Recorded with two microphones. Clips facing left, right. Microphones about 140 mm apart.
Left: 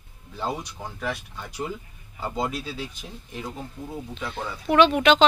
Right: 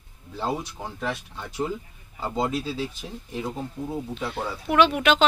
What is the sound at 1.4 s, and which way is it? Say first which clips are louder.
Speech: right 3 dB; 25° right (ahead or behind).